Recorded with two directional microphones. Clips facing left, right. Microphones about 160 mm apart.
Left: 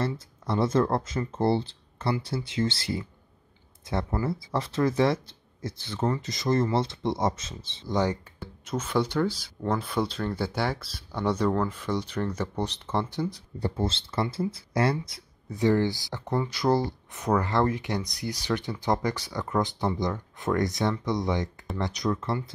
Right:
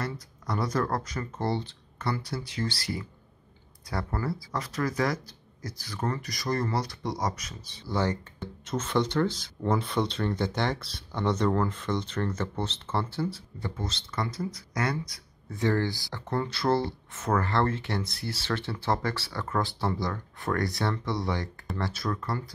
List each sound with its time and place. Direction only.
0.0 s speech: 25° left (ahead or behind)
7.9 s speech: 15° left (ahead or behind)
13.6 s speech: 35° left (ahead or behind)